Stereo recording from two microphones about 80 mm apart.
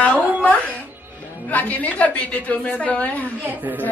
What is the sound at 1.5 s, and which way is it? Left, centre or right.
Speech, centre.